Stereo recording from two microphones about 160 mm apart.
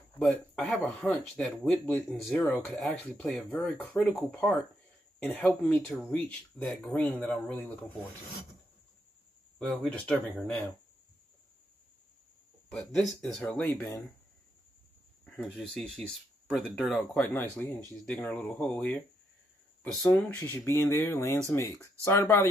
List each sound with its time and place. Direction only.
0.2 s speech: 10° left (ahead or behind)
5.5 s speech: 10° left (ahead or behind)
9.6 s speech: 5° left (ahead or behind)
12.6 s speech: 5° left (ahead or behind)
15.2 s speech: centre (ahead or behind)
20.3 s speech: 15° left (ahead or behind)